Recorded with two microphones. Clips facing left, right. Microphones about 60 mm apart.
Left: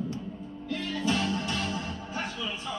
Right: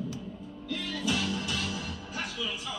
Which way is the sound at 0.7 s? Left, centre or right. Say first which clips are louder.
Left 2 dB; left.